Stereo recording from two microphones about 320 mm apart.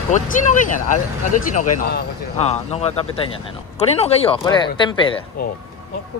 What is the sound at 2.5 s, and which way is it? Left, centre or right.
Speech, centre.